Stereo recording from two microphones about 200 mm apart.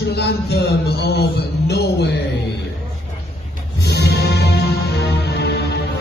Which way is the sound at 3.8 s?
55° left (ahead or behind).